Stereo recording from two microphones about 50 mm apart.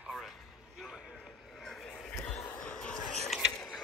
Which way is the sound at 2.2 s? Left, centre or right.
Left.